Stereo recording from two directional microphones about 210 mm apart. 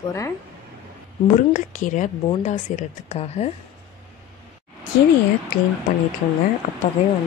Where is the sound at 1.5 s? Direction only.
35° left (ahead or behind).